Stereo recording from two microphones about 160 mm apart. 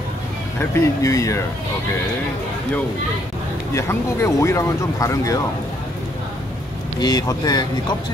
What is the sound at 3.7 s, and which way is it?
Speech, 15° left (ahead or behind).